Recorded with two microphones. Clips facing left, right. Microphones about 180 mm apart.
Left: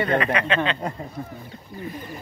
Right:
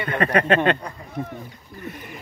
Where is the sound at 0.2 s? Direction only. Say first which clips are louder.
Right 4 dB; 45° right (ahead or behind).